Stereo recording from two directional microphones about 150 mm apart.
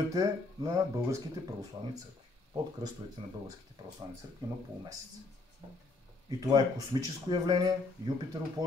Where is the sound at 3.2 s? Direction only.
30° right (ahead or behind).